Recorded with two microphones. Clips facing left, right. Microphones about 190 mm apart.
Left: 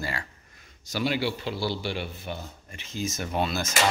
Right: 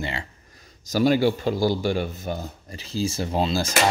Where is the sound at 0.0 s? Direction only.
25° right (ahead or behind).